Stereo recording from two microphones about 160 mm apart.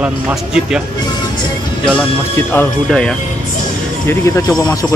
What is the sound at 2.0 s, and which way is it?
Speech, 15° left (ahead or behind).